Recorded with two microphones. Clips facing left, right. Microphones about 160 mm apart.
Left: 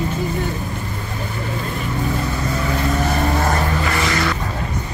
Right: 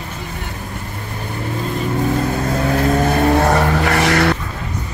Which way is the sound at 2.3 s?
55° right (ahead or behind).